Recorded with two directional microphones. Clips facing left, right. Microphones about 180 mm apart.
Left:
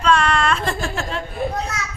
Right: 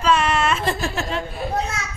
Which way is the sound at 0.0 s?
5° right (ahead or behind).